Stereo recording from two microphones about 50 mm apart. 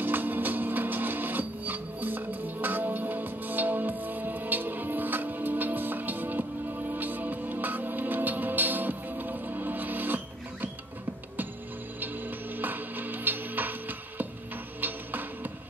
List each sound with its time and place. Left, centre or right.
0.0 s music: right
12.5 s music: right